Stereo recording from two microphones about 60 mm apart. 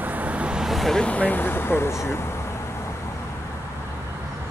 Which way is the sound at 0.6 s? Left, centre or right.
Centre.